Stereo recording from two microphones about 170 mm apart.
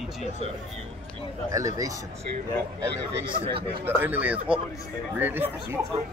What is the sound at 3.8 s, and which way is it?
Speech, 10° right (ahead or behind).